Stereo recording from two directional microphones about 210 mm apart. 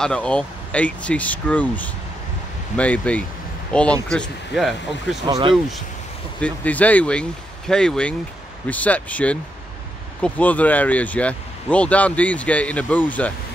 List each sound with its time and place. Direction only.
0.0 s speech: 5° left (ahead or behind)
5.2 s speech: 20° right (ahead or behind)
6.4 s speech: 5° left (ahead or behind)